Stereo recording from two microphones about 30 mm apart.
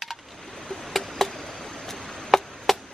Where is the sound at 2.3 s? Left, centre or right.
Centre.